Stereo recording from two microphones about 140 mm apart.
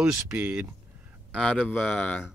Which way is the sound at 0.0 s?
10° right (ahead or behind).